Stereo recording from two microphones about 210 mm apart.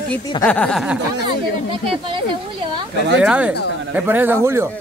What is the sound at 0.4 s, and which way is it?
Speech, 5° left (ahead or behind).